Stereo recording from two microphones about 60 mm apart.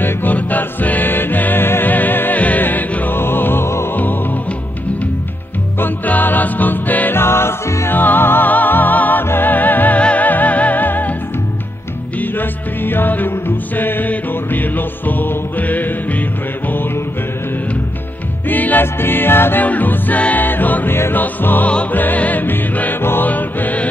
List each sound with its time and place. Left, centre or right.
0.0 s music: left
3.9 s music: left
5.8 s music: left
7.2 s music: left
7.9 s music: left
12.2 s music: left
18.5 s music: left
19.6 s music: left